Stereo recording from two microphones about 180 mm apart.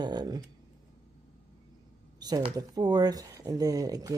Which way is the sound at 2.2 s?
20° right (ahead or behind).